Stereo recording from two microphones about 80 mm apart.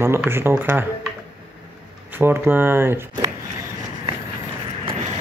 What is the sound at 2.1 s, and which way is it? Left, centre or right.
Speech, right.